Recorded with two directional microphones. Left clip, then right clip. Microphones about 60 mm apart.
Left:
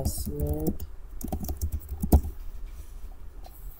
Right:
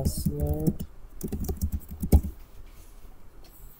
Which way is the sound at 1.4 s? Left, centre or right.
Centre.